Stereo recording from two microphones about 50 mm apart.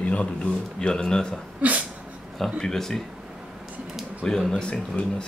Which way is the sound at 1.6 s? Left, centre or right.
Right.